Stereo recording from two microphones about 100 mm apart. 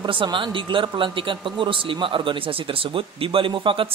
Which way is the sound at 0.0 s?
55° right (ahead or behind).